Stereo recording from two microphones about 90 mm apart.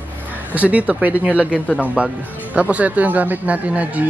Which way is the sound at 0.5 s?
15° right (ahead or behind).